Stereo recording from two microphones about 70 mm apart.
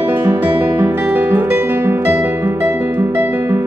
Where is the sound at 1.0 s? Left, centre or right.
Right.